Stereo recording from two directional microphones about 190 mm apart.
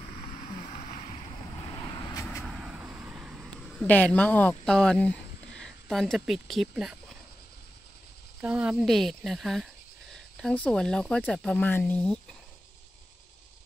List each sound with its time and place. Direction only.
0.0 s vehicle: 45° left (ahead or behind)
1.6 s vehicle: 20° left (ahead or behind)
2.4 s vehicle: 5° right (ahead or behind)
3.8 s speech: 10° left (ahead or behind)
8.4 s speech: 5° right (ahead or behind)